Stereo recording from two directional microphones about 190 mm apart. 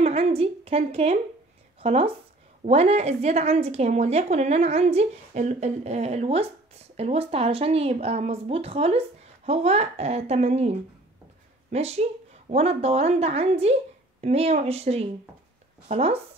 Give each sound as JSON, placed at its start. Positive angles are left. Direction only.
{"t": 0.0, "sound": "a woman's voice", "side_deg": -30}